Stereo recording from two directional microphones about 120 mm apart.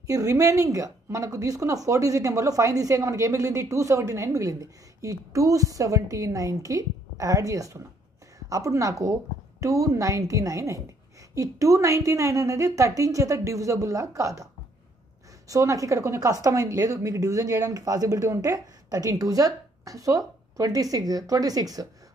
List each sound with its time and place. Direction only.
0.0 s speech: 30° right (ahead or behind)